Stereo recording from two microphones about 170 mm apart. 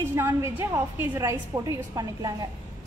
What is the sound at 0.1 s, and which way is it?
A woman's voice, 15° right (ahead or behind).